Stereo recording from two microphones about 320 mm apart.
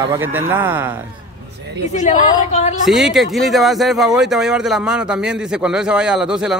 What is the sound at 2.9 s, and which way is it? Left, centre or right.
Speech, centre.